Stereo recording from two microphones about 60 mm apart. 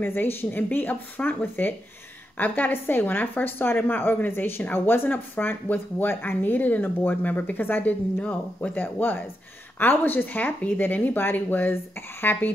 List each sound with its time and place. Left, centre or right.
0.0 s speech: left
8.2 s speech: left